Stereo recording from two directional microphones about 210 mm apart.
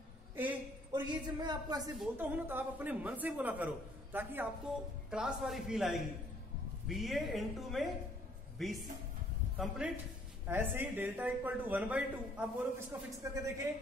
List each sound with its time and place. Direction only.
0.9 s speech: 20° right (ahead or behind)
2.0 s a man's voice: 10° right (ahead or behind)